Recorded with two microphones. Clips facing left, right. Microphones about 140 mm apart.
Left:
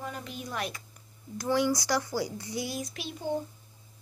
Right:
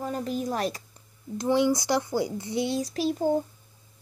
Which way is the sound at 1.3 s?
20° right (ahead or behind).